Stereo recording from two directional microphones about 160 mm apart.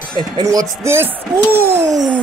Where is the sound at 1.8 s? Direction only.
Centre (ahead or behind).